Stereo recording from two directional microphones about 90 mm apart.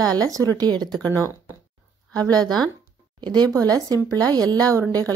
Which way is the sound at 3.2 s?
55° right (ahead or behind).